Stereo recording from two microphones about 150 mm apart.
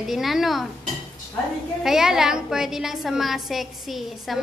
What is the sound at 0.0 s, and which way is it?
Speech, centre (ahead or behind).